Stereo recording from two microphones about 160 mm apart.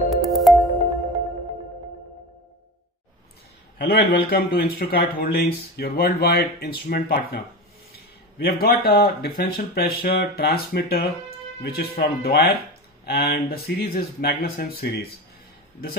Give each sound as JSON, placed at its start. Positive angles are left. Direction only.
{"t": 0.1, "sound": "music", "side_deg": 0}
{"t": 3.7, "sound": "speech", "side_deg": 75}